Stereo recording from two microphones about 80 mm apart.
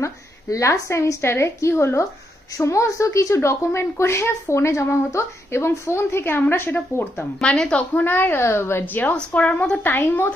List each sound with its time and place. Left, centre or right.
0.0 s a woman's voice: left
7.3 s a woman's voice: centre; by 10.3 s left